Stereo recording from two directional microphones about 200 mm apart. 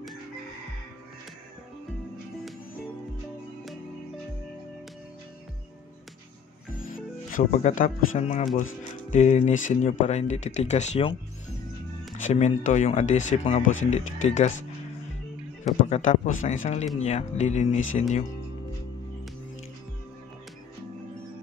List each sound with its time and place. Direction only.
6.7 s speech: 45° left (ahead or behind)
12.2 s speech: 35° left (ahead or behind)
15.6 s speech: 35° left (ahead or behind)